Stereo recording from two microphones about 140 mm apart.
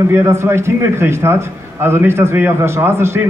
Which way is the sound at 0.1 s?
20° right (ahead or behind).